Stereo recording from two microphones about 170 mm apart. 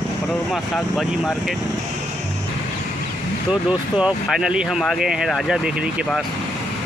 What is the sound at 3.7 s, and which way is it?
Speech, 5° right (ahead or behind).